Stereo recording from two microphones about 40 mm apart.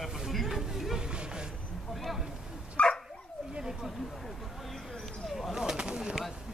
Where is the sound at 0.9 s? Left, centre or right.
Right.